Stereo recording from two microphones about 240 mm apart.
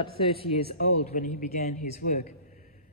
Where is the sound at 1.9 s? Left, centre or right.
Left.